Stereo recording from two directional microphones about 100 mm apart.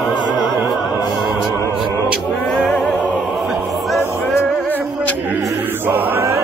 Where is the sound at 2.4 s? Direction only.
5° left (ahead or behind).